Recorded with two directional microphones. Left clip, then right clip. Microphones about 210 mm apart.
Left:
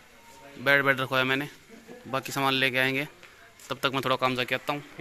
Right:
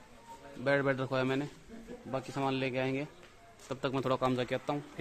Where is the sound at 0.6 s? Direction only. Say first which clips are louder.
Left 8 dB; centre (ahead or behind).